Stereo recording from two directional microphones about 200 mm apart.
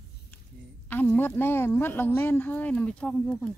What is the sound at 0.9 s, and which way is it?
A woman's voice, 10° left (ahead or behind).